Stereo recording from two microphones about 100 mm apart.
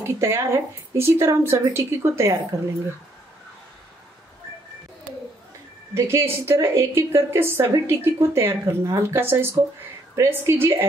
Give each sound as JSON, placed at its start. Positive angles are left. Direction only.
{"t": 0.0, "sound": "a woman's voice", "side_deg": -25}
{"t": 5.9, "sound": "a woman's voice", "side_deg": -25}